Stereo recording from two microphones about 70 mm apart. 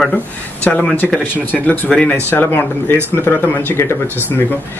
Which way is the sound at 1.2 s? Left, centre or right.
Left.